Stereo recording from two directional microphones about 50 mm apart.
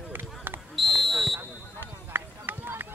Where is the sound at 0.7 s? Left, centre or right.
Centre.